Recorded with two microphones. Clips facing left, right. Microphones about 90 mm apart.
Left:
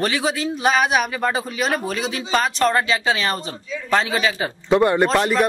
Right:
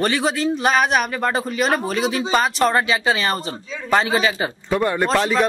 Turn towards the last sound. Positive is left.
turn(degrees=5)  # may be behind; listen again after turning